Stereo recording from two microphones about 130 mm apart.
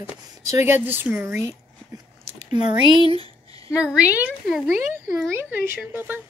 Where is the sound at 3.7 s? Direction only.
10° right (ahead or behind).